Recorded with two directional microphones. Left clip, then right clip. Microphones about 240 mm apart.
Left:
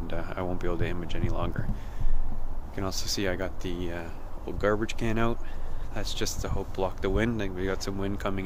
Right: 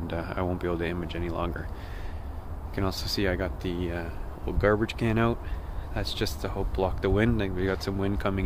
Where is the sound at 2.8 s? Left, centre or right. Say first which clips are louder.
Right 2 dB; centre.